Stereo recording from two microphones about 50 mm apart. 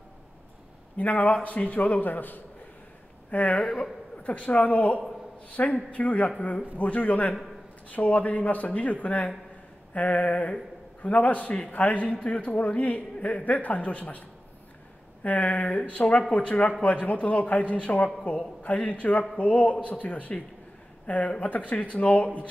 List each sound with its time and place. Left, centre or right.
0.9 s a man's voice: left
15.2 s a man's voice: left